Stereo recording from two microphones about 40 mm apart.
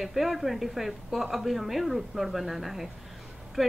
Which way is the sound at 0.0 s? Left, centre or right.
Centre.